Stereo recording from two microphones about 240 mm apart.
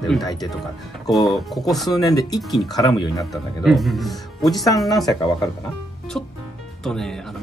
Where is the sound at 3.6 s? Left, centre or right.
Centre.